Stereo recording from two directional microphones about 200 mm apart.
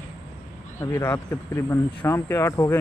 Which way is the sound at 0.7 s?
10° left (ahead or behind).